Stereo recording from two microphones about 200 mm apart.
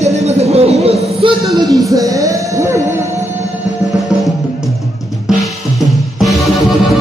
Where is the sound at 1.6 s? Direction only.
15° right (ahead or behind).